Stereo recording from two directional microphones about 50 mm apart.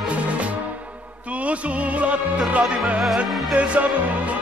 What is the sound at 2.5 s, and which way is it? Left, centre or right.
Music, right.